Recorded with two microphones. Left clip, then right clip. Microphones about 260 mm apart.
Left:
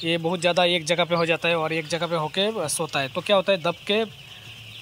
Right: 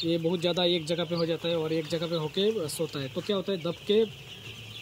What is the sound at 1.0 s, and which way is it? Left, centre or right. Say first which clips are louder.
Speech: left 8 dB; left.